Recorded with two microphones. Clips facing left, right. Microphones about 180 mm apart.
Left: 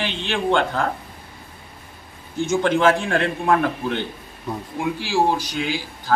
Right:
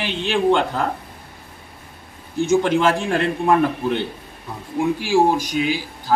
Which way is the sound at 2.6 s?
Centre (ahead or behind).